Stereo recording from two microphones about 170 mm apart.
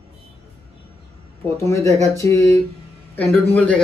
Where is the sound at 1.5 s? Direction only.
15° left (ahead or behind).